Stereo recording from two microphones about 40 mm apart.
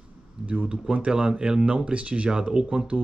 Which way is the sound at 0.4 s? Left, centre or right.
Centre.